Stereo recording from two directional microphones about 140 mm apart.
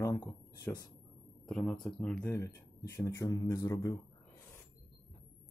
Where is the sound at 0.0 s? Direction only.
20° left (ahead or behind).